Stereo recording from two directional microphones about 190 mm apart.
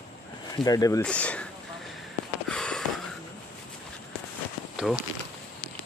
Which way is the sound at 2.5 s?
5° left (ahead or behind).